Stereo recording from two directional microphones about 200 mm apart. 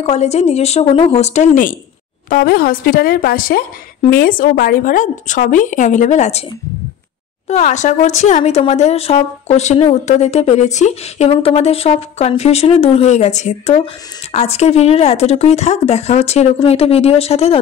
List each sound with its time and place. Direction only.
0.0 s a woman's voice: 30° left (ahead or behind)
7.4 s speech: 35° left (ahead or behind)